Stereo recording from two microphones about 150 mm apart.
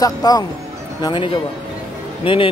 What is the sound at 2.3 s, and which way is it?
Speech, 35° left (ahead or behind).